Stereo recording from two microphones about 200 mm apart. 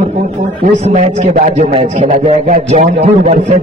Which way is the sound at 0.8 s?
35° right (ahead or behind).